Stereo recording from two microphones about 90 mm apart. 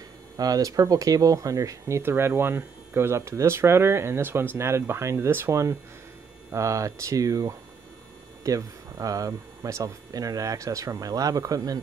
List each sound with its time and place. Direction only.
0.4 s speech: 40° right (ahead or behind)